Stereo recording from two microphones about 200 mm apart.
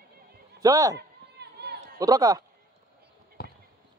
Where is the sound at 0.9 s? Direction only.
55° right (ahead or behind).